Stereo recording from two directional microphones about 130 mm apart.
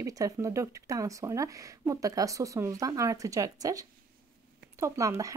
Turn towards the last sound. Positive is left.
turn(degrees=-25)  # may be behind; listen again after turning